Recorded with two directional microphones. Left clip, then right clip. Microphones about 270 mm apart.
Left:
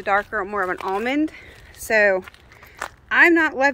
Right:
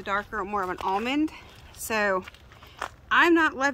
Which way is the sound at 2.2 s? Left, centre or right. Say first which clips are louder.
Left 3 dB; left.